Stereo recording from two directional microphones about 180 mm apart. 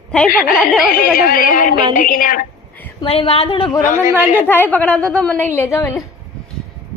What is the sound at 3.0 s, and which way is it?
Speech, 30° left (ahead or behind).